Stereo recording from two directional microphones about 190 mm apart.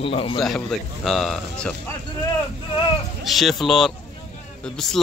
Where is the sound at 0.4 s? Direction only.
Centre (ahead or behind).